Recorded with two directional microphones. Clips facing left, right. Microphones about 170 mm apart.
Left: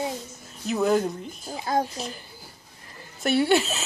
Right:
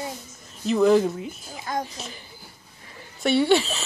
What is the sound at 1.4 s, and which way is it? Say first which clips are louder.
Speech: left 6 dB; 35° left (ahead or behind).